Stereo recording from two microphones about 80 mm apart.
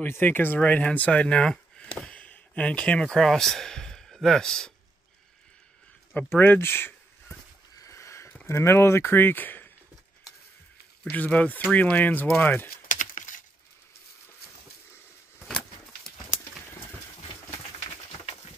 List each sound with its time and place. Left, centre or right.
0.0 s speech: left; by 4.7 s centre
6.2 s speech: left
7.8 s a sound: left
8.5 s speech: left
11.1 s speech: centre